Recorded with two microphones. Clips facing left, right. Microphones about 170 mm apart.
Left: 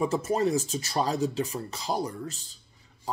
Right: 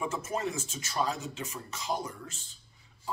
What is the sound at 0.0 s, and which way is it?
Speech, 35° left (ahead or behind).